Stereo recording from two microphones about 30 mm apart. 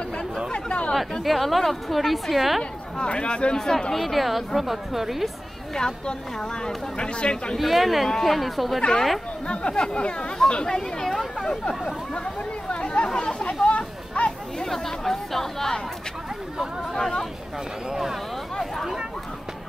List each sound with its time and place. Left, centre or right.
0.5 s chatter: left
1.2 s a woman's voice: centre
3.0 s speech: left
3.5 s speech: centre
3.9 s a woman's voice: centre
5.8 s speech: left
7.5 s a woman's voice: centre
9.5 s speech: left
12.6 s chatter: left
13.4 s a sound: left
14.9 s speech: centre